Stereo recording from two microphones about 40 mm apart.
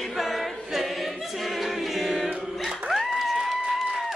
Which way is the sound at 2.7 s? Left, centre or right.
Centre.